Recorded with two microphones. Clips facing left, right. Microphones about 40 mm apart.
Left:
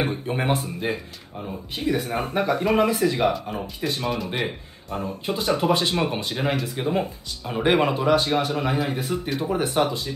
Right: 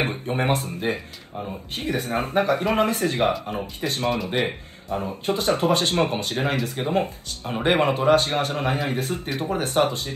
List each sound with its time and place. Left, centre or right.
0.4 s speech: right
1.8 s speech: right
3.4 s speech: right
4.1 s speech: centre
5.2 s speech: right